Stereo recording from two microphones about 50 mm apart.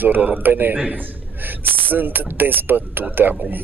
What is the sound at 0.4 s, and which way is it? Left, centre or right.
Speech, right.